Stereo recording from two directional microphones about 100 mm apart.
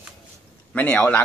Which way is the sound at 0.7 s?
15° left (ahead or behind).